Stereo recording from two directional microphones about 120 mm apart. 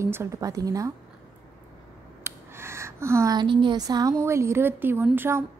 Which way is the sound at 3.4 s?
40° right (ahead or behind).